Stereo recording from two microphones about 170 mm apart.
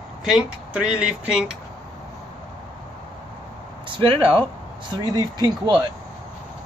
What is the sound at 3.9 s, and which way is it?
Speech, 30° right (ahead or behind).